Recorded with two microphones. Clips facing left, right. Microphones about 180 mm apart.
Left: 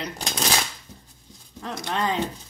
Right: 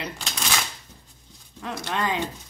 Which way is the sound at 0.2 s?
35° left (ahead or behind).